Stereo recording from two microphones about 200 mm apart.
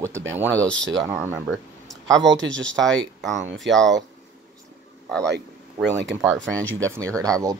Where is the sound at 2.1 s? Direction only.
70° right (ahead or behind).